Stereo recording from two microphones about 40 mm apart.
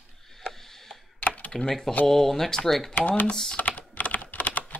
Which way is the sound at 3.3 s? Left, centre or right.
Centre.